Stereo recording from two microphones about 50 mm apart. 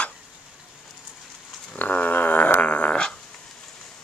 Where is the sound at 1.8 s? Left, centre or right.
Left.